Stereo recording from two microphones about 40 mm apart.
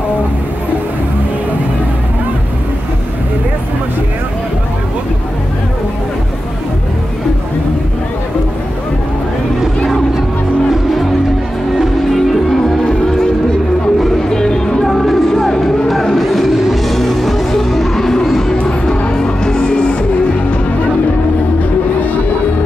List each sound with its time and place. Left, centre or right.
11.8 s music: centre
12.6 s music: centre
14.3 s music: centre
14.9 s music: centre; by 19.7 s left